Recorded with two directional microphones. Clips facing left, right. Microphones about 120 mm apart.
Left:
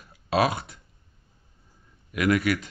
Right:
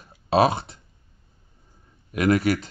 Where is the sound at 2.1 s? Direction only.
35° right (ahead or behind).